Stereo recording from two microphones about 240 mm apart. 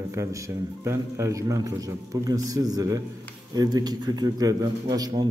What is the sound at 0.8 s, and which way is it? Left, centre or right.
A man's voice, centre.